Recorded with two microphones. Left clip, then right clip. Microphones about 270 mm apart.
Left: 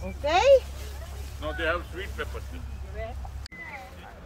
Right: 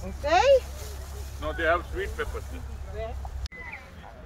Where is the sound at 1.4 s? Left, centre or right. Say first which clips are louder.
Right 3 dB; centre.